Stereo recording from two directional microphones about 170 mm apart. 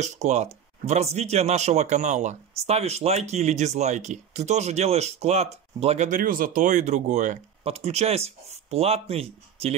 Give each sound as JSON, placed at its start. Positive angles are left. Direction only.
{"t": 0.0, "sound": "speech", "side_deg": -40}